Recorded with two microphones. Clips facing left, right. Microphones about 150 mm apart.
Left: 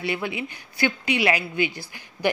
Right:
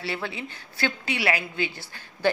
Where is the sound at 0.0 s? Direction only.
15° left (ahead or behind).